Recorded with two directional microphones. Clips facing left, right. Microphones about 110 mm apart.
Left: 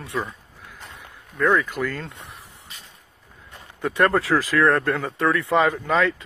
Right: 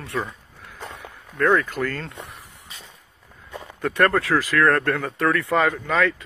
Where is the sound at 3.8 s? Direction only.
20° left (ahead or behind).